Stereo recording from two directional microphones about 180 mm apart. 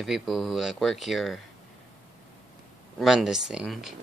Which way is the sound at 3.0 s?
Centre (ahead or behind).